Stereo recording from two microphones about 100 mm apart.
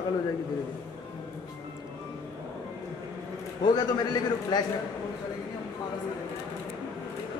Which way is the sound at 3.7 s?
45° left (ahead or behind).